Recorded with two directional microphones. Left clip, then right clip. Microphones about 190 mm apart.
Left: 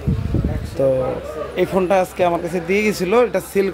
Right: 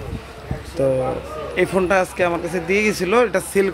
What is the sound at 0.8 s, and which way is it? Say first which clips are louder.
Speech: left 2 dB; 5° left (ahead or behind).